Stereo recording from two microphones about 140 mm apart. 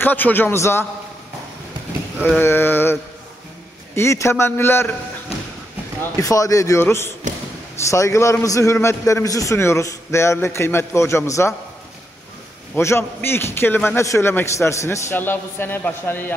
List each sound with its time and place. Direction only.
0.0 s a man's voice: 15° left (ahead or behind)
2.2 s a man's voice: 15° left (ahead or behind)
6.1 s a man's voice: 25° left (ahead or behind)
12.7 s a man's voice: 15° left (ahead or behind)